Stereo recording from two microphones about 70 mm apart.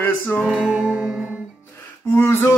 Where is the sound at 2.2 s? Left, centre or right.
Left.